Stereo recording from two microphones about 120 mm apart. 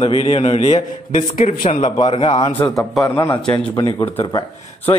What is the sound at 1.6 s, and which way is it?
Speech, 45° left (ahead or behind).